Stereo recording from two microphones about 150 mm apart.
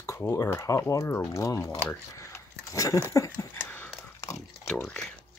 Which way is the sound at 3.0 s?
20° left (ahead or behind).